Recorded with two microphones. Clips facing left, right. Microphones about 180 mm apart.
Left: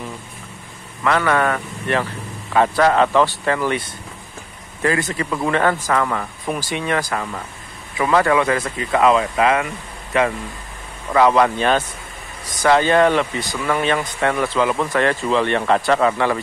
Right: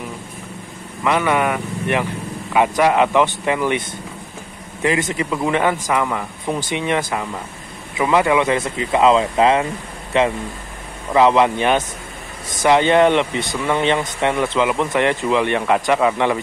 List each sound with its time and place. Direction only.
1.0 s speech: 15° right (ahead or behind)
4.8 s speech: 20° right (ahead or behind)